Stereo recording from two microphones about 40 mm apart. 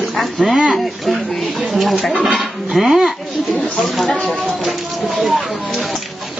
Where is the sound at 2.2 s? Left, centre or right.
Centre.